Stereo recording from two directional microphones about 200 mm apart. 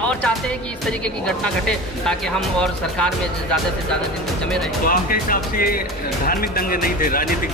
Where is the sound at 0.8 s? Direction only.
5° left (ahead or behind).